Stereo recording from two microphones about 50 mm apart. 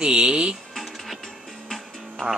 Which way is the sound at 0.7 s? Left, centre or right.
Centre.